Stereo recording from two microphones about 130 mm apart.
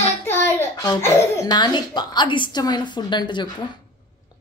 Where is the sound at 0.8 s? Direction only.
25° left (ahead or behind).